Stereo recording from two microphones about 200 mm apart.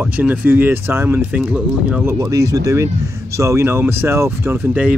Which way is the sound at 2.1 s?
15° right (ahead or behind).